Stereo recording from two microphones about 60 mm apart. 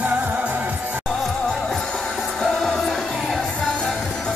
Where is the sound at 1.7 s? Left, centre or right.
Centre.